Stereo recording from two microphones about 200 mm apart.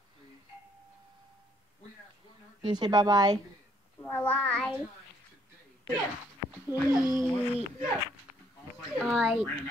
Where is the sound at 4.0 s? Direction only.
10° left (ahead or behind).